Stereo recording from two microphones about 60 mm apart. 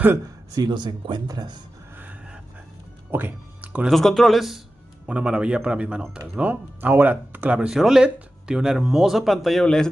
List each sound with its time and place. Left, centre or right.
0.6 s speech: right
3.1 s music: right
3.9 s speech: centre
5.0 s speech: centre